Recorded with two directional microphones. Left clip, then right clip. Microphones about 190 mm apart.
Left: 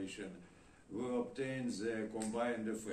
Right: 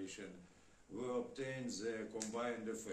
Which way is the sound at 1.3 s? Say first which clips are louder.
Left 4 dB; 30° right (ahead or behind).